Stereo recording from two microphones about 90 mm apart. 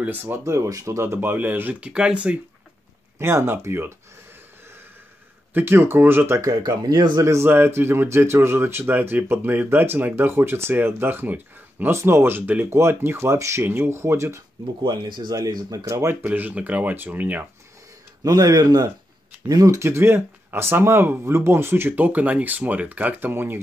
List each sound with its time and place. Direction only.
0.0 s speech: 20° right (ahead or behind)
0.4 s speech: 35° right (ahead or behind); by 2.1 s 10° right (ahead or behind)
3.2 s speech: 30° right (ahead or behind)
5.5 s speech: 25° right (ahead or behind)
6.5 s speech: 50° right (ahead or behind)
7.2 s speech: 25° right (ahead or behind)
14.8 s speech: 55° right (ahead or behind); by 17.5 s 20° right (ahead or behind)
18.2 s speech: 40° right (ahead or behind); by 23.6 s 25° right (ahead or behind)